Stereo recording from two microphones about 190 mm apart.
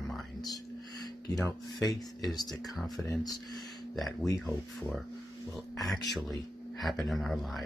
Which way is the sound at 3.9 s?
Centre (ahead or behind).